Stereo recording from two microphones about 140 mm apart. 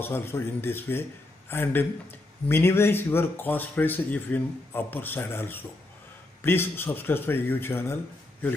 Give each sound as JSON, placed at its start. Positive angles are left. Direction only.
{"t": 0.0, "sound": "speech", "side_deg": 15}